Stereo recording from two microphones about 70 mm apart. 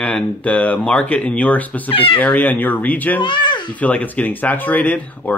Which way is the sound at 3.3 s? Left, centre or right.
Left.